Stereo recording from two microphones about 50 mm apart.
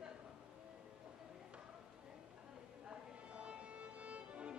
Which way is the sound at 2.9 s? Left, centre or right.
Right.